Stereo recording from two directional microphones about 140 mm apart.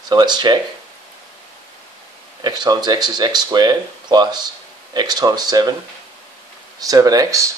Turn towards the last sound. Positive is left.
turn(degrees=-25)  # may be behind; listen again after turning